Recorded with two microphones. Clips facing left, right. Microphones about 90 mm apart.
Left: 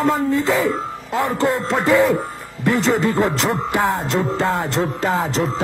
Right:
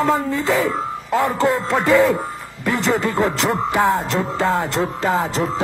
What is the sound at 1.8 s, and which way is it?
Speech, centre (ahead or behind).